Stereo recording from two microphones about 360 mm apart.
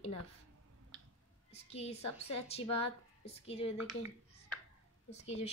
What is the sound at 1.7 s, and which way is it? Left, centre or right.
A woman's voice, centre.